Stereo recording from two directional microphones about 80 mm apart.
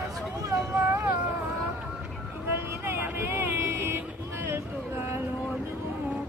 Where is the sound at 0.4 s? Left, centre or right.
Right.